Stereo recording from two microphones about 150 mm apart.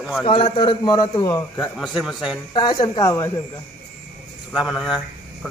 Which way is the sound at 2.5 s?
30° left (ahead or behind).